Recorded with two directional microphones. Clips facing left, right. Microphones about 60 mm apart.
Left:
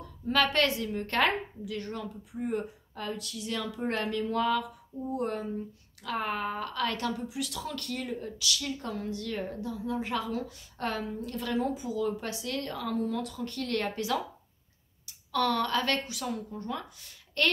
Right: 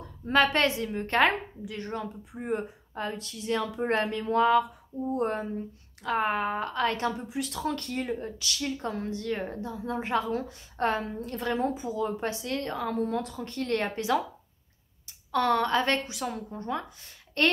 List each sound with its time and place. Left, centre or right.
0.3 s a woman's voice: right